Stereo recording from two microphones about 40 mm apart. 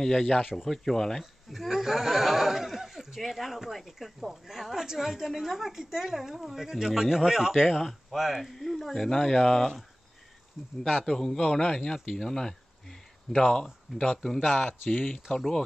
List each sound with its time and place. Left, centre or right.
0.0 s speech: centre
0.4 s speech: centre
0.7 s speech: centre
1.5 s a sound: centre
3.2 s speech: centre
7.8 s speech: centre
11.1 s speech: centre
14.9 s speech: centre